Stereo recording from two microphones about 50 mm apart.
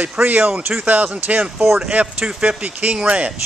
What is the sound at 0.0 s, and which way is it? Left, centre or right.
Speech, right.